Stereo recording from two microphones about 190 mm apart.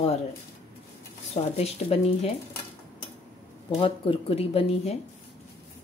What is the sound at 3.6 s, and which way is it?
Speech, 30° left (ahead or behind).